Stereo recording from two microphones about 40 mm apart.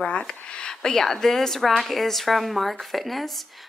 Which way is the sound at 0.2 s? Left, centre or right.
Centre.